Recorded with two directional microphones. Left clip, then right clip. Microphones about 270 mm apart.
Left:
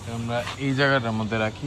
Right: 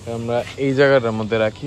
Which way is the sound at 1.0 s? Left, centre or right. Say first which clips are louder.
Right 7 dB; right.